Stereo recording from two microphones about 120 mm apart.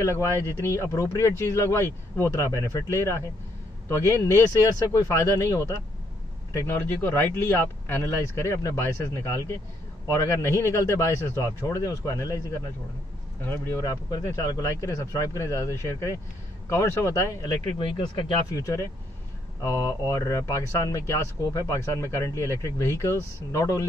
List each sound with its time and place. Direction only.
0.0 s speech: 25° left (ahead or behind)
13.5 s speech: 25° left (ahead or behind)
17.7 s speech: 40° left (ahead or behind)
18.5 s speech: 25° left (ahead or behind)